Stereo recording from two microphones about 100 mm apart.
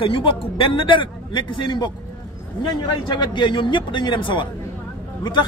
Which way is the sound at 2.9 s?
50° left (ahead or behind).